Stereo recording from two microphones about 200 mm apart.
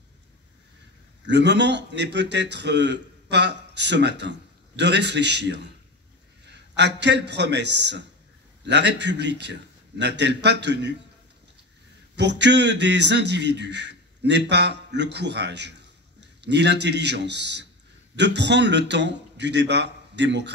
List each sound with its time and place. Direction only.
1.2 s a man's voice: 60° right (ahead or behind)
12.2 s a man's voice: 60° right (ahead or behind)